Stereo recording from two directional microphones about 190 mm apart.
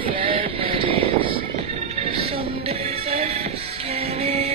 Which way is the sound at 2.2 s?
35° right (ahead or behind).